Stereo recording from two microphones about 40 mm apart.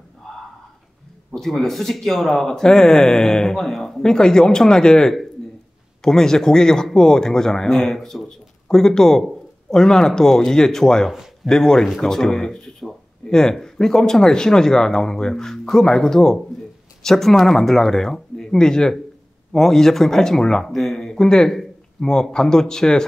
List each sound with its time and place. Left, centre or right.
1.3 s speech: centre